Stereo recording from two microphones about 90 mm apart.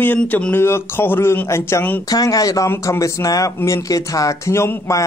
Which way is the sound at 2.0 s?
45° left (ahead or behind).